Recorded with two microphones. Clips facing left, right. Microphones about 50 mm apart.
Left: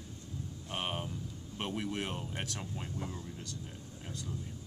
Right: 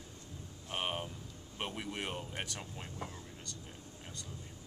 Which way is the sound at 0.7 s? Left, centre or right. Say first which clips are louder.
Even; centre.